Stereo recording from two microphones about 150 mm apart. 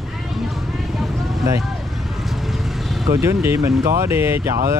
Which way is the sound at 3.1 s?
20° right (ahead or behind).